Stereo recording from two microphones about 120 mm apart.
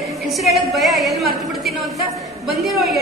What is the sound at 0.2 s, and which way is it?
A woman's voice, centre (ahead or behind).